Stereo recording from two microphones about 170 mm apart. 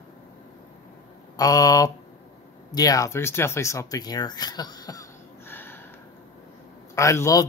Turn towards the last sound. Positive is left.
turn(degrees=20)  # may be behind; listen again after turning